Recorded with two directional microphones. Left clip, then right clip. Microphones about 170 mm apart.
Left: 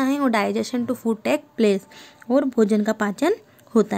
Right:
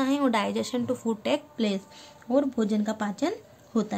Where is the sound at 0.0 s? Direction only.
35° left (ahead or behind).